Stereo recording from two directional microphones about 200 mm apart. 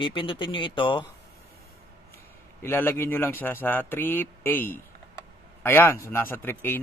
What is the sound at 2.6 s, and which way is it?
Speech, 10° left (ahead or behind).